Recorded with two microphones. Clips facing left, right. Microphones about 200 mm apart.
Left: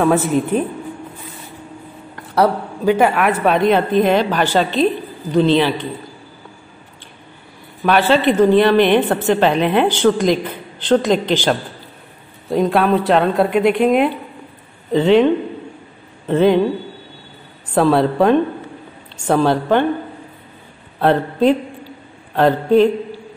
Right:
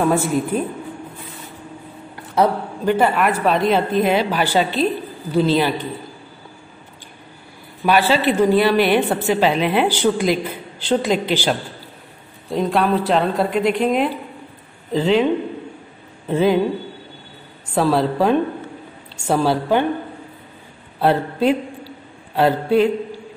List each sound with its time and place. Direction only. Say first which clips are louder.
0.2 s a woman's voice: left 3 dB; 10° right (ahead or behind)
2.3 s a man's voice: left 2 dB; centre (ahead or behind)
7.8 s a woman's voice: left 2 dB; 5° right (ahead or behind)
16.3 s a woman's voice: left 3 dB; 5° right (ahead or behind)
17.8 s a woman's voice: left 3 dB; 5° right (ahead or behind)
21.0 s a sound: left 3 dB; 5° right (ahead or behind)